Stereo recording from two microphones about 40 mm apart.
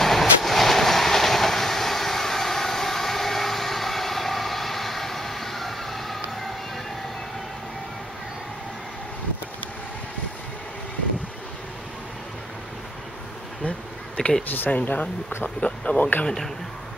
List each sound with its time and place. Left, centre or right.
0.0 s train: centre
13.7 s bee: left
14.7 s speech: left
16.0 s speech: left